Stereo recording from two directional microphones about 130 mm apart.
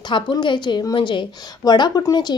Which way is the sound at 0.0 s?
35° left (ahead or behind).